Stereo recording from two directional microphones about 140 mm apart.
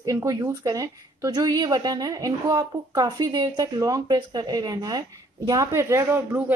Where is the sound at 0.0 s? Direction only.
25° right (ahead or behind).